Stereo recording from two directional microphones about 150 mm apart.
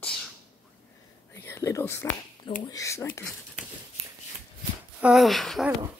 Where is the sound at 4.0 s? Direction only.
45° right (ahead or behind).